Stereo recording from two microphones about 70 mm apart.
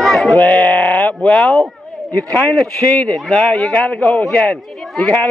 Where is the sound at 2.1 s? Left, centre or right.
Left.